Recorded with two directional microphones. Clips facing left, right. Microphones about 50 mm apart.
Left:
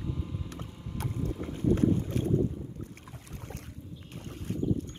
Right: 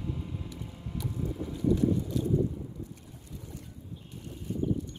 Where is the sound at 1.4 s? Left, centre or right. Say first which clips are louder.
Left 1 dB; left.